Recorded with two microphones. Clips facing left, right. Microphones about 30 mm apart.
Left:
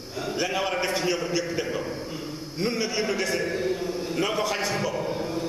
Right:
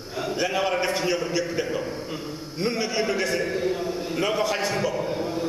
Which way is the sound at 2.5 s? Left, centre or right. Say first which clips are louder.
Right 1 dB; centre.